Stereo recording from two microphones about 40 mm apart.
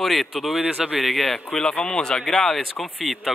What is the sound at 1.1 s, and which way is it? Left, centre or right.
Speech, centre.